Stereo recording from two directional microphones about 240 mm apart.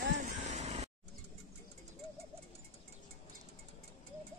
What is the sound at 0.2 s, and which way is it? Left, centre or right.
Vehicle, right.